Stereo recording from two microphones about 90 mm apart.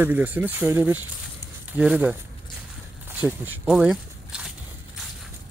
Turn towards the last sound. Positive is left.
turn(degrees=-10)  # may be behind; listen again after turning